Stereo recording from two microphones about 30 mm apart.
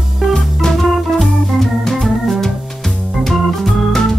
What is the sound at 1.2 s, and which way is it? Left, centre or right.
Organ, centre.